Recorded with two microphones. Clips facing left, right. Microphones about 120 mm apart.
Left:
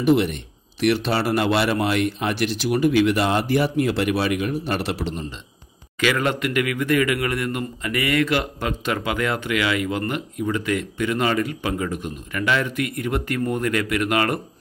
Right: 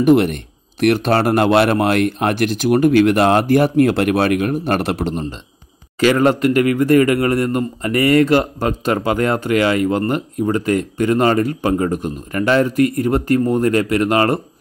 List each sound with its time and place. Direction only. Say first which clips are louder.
0.0 s speech: right 6 dB; 50° right (ahead or behind)
5.9 s a man's voice: right 8 dB; 35° right (ahead or behind)